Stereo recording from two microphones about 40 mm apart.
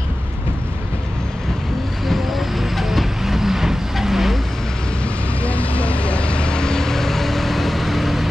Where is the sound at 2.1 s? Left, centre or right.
Centre.